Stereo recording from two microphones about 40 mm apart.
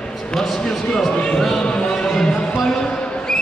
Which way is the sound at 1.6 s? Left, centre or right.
Left.